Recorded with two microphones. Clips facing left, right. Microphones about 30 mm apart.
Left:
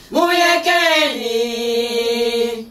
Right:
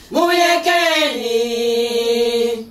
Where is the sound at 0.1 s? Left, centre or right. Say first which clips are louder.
Even; centre.